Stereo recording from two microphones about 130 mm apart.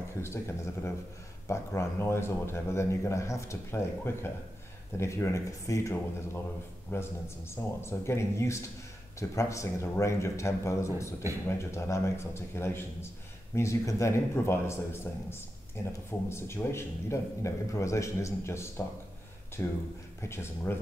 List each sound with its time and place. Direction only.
0.2 s speech: 20° left (ahead or behind)